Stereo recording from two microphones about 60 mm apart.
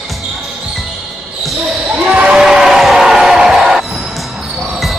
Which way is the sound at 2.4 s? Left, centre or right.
Centre.